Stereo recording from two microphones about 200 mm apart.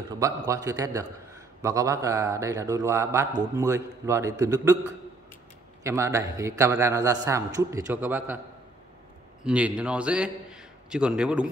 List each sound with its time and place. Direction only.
0.1 s a man's voice: 15° right (ahead or behind)
9.4 s a man's voice: 5° right (ahead or behind)